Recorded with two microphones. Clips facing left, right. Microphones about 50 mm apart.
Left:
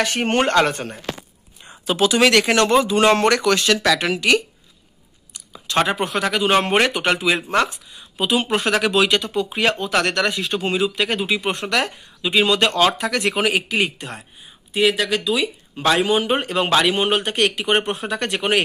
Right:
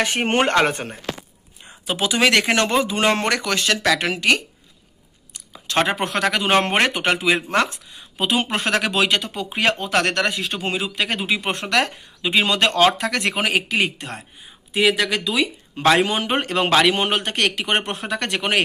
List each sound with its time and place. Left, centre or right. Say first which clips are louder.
0.0 s speech: even; right
1.9 s speech: left 3 dB; centre; by 4.4 s right
5.3 s a sound: left 1 dB; right
5.9 s speech: left 1 dB; right
6.7 s speech: left 1 dB; right
7.6 s speech: left 1 dB; right
14.7 s speech: even; right
15.7 s speech: right 2 dB; right
16.3 s speech: left 1 dB; right
16.5 s speech: right 2 dB; right